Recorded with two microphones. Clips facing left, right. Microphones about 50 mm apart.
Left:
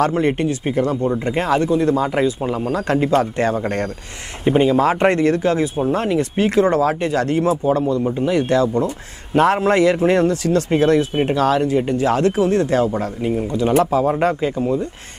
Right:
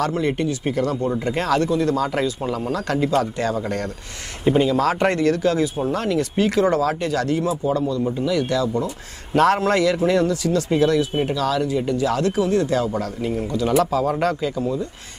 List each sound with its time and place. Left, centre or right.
0.0 s speech: left
4.5 s a man's voice: left
9.3 s a man's voice: centre; by 14.9 s left